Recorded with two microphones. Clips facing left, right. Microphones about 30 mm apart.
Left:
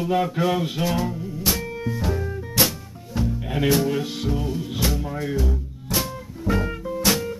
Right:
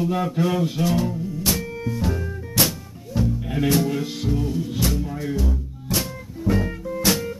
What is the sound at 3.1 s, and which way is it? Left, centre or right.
Music, centre.